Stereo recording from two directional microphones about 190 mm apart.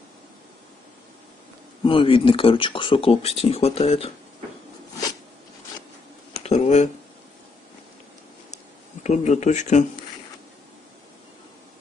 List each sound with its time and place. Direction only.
1.9 s speech: 30° left (ahead or behind)
6.4 s a sound: 35° left (ahead or behind)
9.0 s speech: 40° left (ahead or behind)